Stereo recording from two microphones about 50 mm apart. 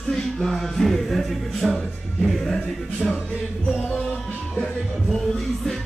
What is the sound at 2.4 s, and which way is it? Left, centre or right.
Speech, centre.